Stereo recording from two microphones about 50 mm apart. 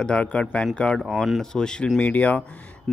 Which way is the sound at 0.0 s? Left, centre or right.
Left.